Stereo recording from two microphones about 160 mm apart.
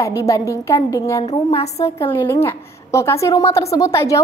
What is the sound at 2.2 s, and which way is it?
A woman's voice, 15° left (ahead or behind).